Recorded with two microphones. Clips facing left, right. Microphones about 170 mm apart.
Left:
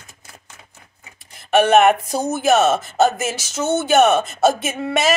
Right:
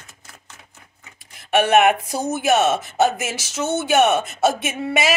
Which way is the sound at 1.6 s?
5° right (ahead or behind).